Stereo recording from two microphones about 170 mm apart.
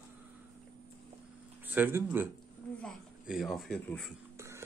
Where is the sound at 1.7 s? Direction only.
10° right (ahead or behind).